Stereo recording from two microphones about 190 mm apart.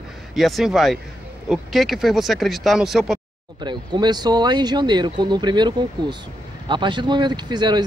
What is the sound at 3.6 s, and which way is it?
Speech, 25° right (ahead or behind).